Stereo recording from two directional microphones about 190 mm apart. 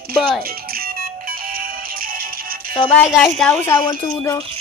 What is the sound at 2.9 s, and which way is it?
Speech, centre (ahead or behind).